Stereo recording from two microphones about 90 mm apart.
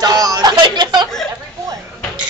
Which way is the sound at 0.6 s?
55° right (ahead or behind).